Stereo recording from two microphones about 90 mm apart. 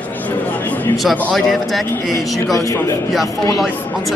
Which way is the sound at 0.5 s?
20° left (ahead or behind).